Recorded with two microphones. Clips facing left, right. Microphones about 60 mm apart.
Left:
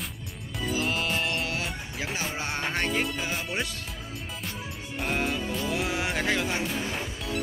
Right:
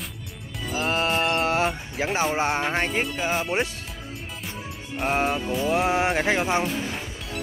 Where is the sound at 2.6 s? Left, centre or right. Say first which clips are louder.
Right 4 dB; centre.